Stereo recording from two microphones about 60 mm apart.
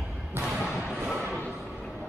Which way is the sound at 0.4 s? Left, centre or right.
Centre.